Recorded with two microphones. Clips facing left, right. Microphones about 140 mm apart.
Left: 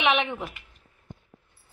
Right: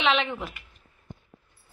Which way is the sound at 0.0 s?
15° left (ahead or behind).